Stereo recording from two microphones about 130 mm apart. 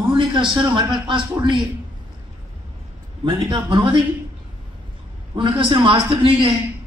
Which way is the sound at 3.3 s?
35° right (ahead or behind).